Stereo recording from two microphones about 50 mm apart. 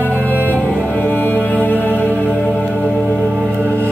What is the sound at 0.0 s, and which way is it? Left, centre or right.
Music, left.